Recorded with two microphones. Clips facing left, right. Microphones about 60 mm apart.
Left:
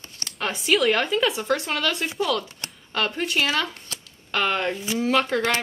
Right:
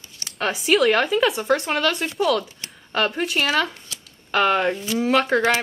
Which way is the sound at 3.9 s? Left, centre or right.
Left.